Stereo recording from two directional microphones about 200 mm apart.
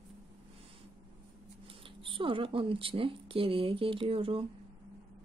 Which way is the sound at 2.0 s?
25° right (ahead or behind).